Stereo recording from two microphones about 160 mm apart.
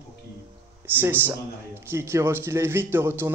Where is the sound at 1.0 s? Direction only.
15° right (ahead or behind).